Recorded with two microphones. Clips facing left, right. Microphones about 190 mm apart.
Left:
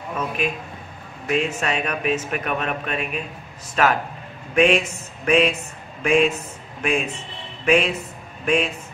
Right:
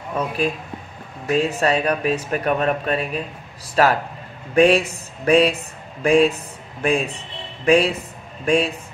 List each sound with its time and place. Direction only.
1.2 s speech: 35° right (ahead or behind)